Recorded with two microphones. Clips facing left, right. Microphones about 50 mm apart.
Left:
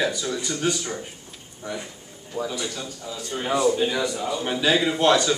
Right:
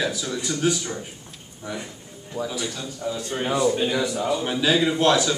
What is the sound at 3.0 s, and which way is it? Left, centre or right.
Speech, right.